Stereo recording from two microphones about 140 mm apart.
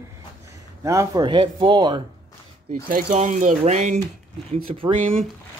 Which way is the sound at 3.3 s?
55° right (ahead or behind).